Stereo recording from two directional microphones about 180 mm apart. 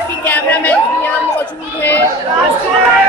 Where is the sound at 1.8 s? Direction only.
10° left (ahead or behind).